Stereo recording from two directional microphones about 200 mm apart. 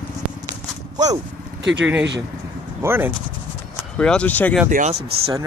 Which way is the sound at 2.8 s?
10° right (ahead or behind).